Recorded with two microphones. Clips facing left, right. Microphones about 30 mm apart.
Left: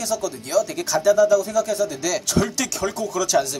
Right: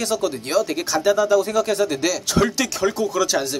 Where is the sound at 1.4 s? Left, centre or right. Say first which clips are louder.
Right 2 dB; right.